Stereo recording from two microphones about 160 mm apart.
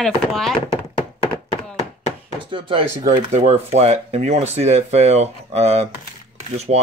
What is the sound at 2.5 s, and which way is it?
Speech, 35° right (ahead or behind).